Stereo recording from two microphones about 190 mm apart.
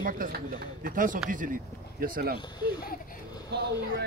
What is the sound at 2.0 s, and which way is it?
Speech, 50° right (ahead or behind).